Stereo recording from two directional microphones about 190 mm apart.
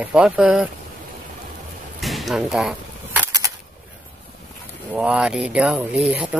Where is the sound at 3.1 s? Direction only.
15° right (ahead or behind).